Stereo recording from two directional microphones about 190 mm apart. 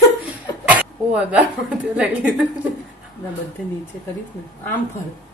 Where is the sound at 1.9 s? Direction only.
5° right (ahead or behind).